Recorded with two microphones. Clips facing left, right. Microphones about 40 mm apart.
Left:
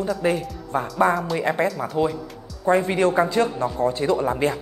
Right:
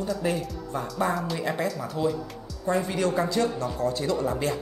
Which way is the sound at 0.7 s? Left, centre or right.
Left.